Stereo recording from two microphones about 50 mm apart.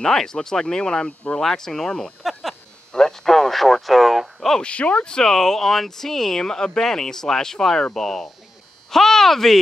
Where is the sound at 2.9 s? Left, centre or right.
Centre.